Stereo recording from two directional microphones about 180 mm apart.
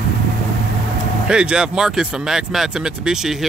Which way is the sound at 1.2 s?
5° right (ahead or behind).